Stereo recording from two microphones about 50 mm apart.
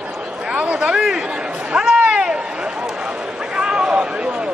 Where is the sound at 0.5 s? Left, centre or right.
Right.